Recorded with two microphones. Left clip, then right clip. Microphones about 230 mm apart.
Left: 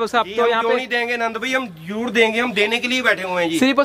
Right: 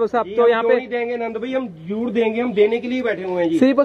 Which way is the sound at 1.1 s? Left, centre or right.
Left.